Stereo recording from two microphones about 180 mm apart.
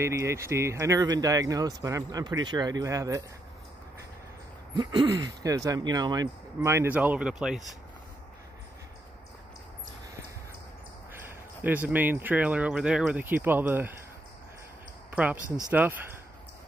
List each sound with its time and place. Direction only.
0.0 s speech: 15° right (ahead or behind)
4.7 s speech: 20° right (ahead or behind); by 7.6 s 5° right (ahead or behind)
11.1 s speech: 10° right (ahead or behind)
15.0 s a sound: 10° right (ahead or behind)
15.7 s speech: 10° right (ahead or behind)